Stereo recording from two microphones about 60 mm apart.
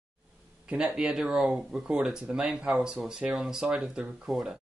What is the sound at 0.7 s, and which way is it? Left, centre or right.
Speech, right.